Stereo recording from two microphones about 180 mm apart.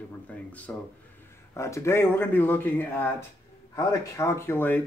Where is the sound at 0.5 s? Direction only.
10° left (ahead or behind).